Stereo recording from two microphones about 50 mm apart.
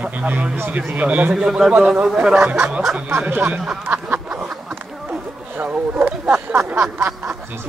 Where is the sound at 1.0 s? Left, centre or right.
Right.